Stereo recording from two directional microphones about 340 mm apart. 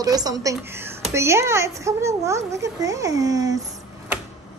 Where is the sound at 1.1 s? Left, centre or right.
Centre.